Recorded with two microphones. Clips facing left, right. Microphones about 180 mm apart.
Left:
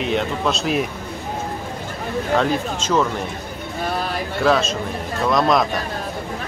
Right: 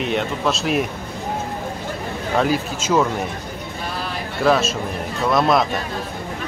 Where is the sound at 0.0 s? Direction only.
Centre (ahead or behind).